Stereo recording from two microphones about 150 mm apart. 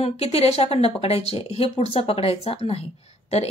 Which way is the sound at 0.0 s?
45° left (ahead or behind).